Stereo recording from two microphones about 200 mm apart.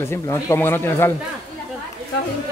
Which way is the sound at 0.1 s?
15° left (ahead or behind).